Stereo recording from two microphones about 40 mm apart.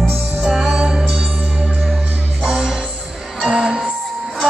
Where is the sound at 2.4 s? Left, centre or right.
Right.